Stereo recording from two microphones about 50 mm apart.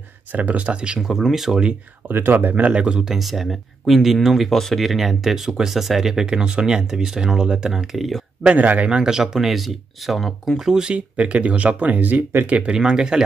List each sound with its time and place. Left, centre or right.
0.3 s speech: right
0.7 s speech: centre
2.0 s speech: right
3.2 s speech: centre
8.5 s speech: right
8.8 s speech: centre
10.7 s speech: centre
11.1 s speech: right
12.7 s speech: centre